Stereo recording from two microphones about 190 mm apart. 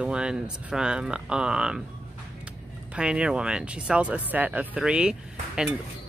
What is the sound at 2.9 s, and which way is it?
Speech, 5° right (ahead or behind).